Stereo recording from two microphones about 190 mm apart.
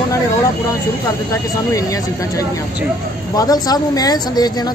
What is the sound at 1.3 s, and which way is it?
Speech, 15° left (ahead or behind).